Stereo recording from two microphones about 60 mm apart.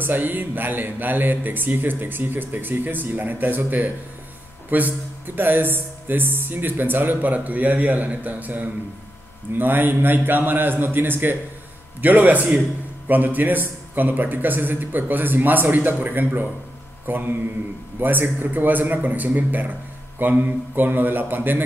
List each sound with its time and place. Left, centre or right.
0.0 s speech: right
17.0 s mantra: right
17.9 s speech: right